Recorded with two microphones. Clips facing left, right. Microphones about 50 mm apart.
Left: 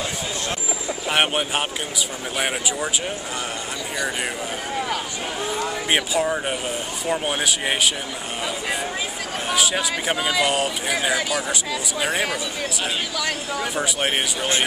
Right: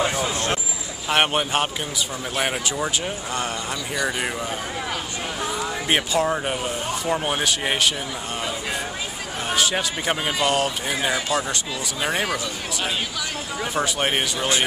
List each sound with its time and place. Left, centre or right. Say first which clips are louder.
0.0 s a sound: right 5 dB; right
1.1 s speech: right 2 dB; centre
5.9 s speech: right 1 dB; centre
9.6 s speech: even; centre
12.0 s speech: even; centre
13.7 s speech: right 2 dB; centre